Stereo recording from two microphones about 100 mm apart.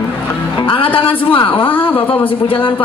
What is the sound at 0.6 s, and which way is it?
Speech, 60° left (ahead or behind).